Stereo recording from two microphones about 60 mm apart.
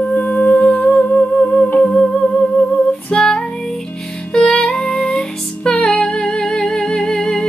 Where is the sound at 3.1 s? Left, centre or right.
Centre.